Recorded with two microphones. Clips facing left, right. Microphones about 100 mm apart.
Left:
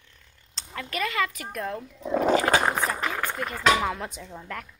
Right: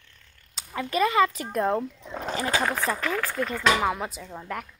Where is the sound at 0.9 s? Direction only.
25° right (ahead or behind).